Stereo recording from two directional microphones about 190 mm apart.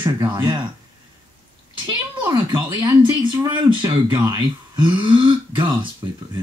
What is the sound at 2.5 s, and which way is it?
Speech, 10° right (ahead or behind).